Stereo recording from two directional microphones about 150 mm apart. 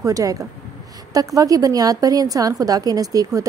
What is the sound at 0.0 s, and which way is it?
A woman's voice, 20° right (ahead or behind).